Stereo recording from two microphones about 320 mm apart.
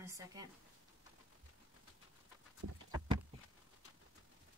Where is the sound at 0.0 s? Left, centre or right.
Centre.